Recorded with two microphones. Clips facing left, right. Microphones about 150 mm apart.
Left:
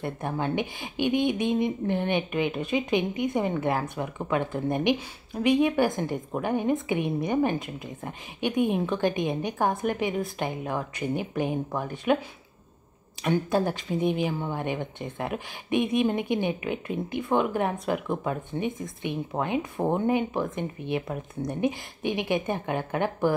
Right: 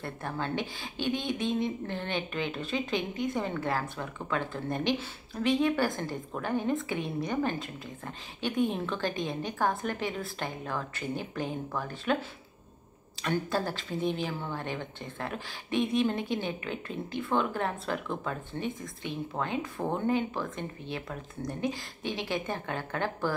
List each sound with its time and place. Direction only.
0.0 s speech: 20° left (ahead or behind)
13.2 s speech: 15° left (ahead or behind)